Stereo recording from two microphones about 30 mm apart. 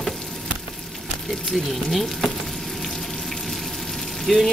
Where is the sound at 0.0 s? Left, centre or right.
Centre.